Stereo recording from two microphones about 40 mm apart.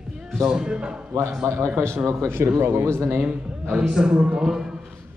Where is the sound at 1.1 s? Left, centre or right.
Right.